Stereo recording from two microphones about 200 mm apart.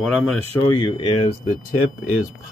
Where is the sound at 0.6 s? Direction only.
25° left (ahead or behind).